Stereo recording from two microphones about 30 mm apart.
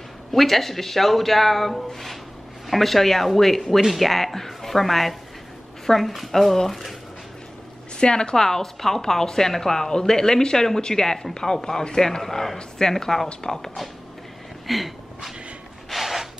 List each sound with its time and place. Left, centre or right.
0.3 s a woman's voice: centre
8.0 s speech: left
8.4 s a woman's voice: centre
14.7 s a sound: centre